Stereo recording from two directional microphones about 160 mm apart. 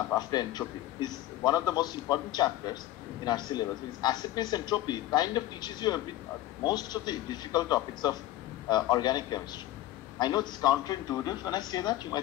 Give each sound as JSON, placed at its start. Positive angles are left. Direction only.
{"t": 0.1, "sound": "a man's voice", "side_deg": 25}